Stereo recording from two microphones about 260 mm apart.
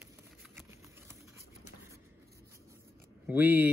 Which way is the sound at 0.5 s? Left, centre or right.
Centre.